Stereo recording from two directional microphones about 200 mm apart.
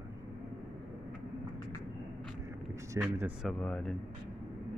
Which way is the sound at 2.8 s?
10° right (ahead or behind).